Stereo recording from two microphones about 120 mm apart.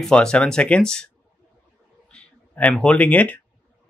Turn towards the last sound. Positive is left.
turn(degrees=15)  # may be behind; listen again after turning